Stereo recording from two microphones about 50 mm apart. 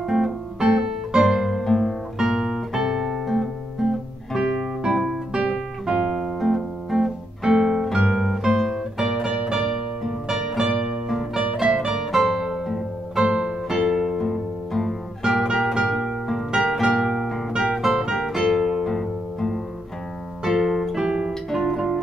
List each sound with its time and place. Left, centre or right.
0.0 s music: centre
2.1 s guitar: centre
5.3 s guitar: centre
5.9 s music: centre
15.4 s music: centre
21.3 s music: centre